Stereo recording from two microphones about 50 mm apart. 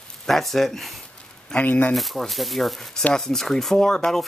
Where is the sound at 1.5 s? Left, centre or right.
Left.